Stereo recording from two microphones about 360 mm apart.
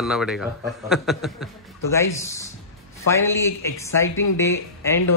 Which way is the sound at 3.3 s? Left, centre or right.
Centre.